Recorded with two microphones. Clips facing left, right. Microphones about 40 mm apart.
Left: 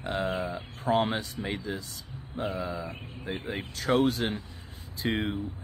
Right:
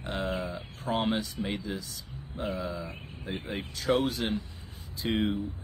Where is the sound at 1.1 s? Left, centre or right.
Left.